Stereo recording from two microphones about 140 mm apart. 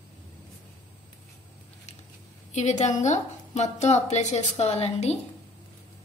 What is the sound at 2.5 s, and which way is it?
A woman's voice, 55° left (ahead or behind).